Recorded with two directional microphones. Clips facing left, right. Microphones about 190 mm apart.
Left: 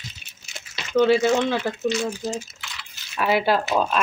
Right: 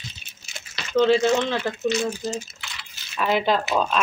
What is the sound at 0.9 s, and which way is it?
Speech, 10° left (ahead or behind).